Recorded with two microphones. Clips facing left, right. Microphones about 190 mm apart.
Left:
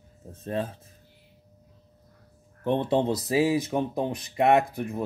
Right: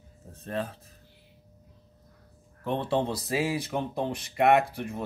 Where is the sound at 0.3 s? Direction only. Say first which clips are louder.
Left 3 dB; 20° left (ahead or behind).